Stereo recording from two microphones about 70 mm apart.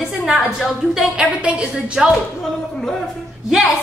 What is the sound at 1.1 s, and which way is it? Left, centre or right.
A woman's voice, centre.